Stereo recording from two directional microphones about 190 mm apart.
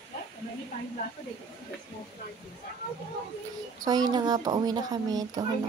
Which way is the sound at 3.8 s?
20° right (ahead or behind).